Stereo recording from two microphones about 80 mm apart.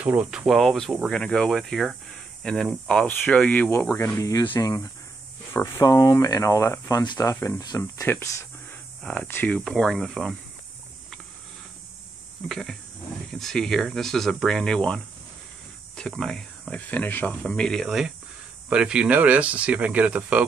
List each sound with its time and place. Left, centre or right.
0.0 s speech: right
0.5 s speech: centre
3.1 s speech: centre
4.2 s speech: left
9.0 s speech: centre
12.4 s speech: centre
16.2 s speech: centre
16.9 s speech: left
17.4 s speech: centre
17.8 s speech: centre